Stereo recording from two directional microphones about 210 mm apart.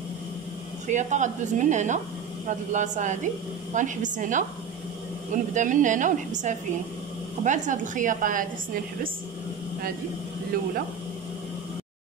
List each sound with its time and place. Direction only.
0.8 s a woman's voice: 35° right (ahead or behind)
10.5 s speech: 45° right (ahead or behind)